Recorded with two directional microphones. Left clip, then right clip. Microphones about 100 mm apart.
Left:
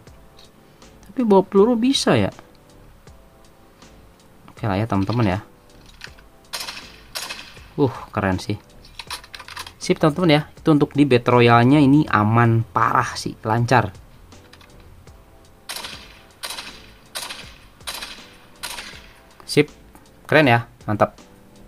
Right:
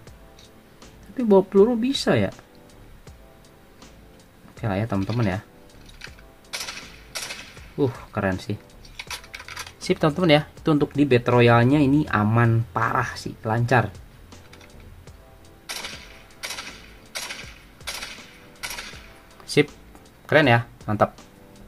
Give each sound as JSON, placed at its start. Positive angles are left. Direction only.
{"t": 1.1, "sound": "speech", "side_deg": 40}
{"t": 4.6, "sound": "speech", "side_deg": 40}
{"t": 7.2, "sound": "a sound", "side_deg": 55}
{"t": 7.7, "sound": "speech", "side_deg": 50}
{"t": 9.0, "sound": "computer keyboard", "side_deg": 0}
{"t": 9.8, "sound": "speech", "side_deg": 30}
{"t": 10.8, "sound": "speech", "side_deg": 40}
{"t": 15.6, "sound": "a sound", "side_deg": 55}
{"t": 19.4, "sound": "a sound", "side_deg": 20}
{"t": 20.2, "sound": "speech", "side_deg": 30}